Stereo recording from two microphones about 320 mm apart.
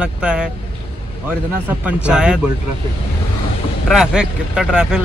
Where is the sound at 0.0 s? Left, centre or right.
Centre.